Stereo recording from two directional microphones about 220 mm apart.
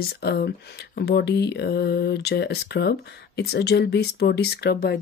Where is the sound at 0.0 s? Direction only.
45° left (ahead or behind).